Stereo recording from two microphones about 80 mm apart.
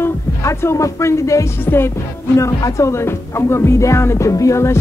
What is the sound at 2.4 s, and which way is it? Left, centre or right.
Speech, left.